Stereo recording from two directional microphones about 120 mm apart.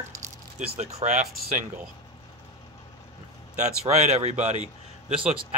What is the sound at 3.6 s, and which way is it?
A man's voice, 70° right (ahead or behind).